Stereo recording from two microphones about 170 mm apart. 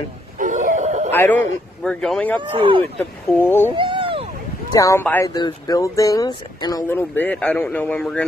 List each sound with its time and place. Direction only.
0.4 s a sound: 50° right (ahead or behind)
1.1 s speech: 10° left (ahead or behind)
2.5 s speech: 30° right (ahead or behind)
3.0 s speech: 10° left (ahead or behind)
3.7 s a sound: 30° right (ahead or behind)
4.7 s speech: 20° left (ahead or behind)
5.3 s speech: 20° left (ahead or behind)